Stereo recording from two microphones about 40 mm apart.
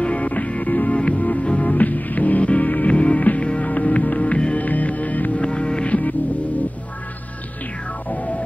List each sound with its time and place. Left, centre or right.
0.0 s music: left
5.4 s music: left
8.1 s organ: left